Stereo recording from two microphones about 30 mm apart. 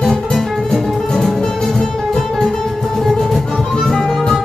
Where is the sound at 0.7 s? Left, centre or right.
Centre.